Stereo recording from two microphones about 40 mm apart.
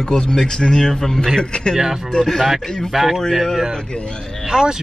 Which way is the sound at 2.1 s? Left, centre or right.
Centre.